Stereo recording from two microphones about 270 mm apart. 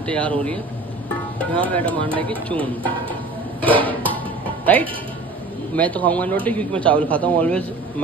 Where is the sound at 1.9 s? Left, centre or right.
Centre.